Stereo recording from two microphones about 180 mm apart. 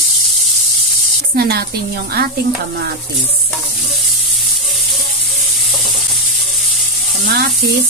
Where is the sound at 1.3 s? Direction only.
60° right (ahead or behind).